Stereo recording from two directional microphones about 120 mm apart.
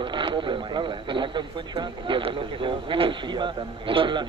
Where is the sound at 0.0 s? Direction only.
45° right (ahead or behind).